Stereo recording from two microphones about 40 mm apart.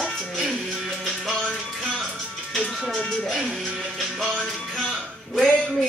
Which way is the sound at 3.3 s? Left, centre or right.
Centre.